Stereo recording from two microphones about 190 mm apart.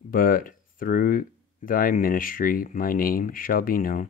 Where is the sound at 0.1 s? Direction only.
50° left (ahead or behind).